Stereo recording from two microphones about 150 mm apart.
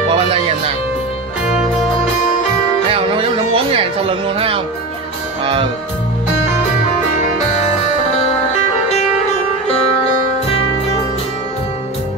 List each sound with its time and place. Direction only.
2.9 s music: 35° right (ahead or behind)